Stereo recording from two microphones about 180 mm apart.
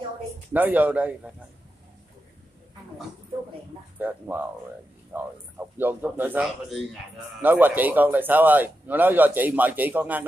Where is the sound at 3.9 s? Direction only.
10° right (ahead or behind).